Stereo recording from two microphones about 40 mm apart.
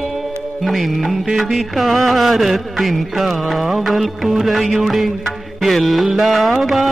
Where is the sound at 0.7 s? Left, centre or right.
Centre.